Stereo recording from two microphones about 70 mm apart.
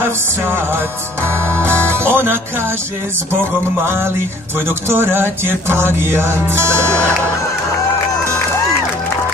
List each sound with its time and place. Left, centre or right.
0.0 s music: right
3.8 s music: right